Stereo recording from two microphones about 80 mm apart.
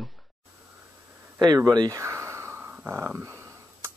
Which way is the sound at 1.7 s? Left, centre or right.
Right.